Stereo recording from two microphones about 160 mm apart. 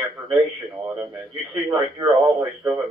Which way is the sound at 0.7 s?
20° right (ahead or behind).